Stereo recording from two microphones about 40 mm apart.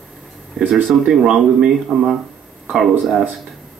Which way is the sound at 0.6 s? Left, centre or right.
Centre.